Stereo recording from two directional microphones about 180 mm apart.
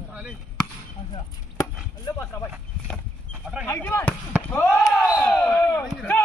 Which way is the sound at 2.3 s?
10° left (ahead or behind).